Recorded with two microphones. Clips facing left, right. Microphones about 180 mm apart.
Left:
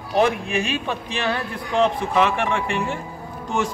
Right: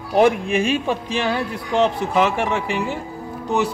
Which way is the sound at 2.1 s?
5° right (ahead or behind).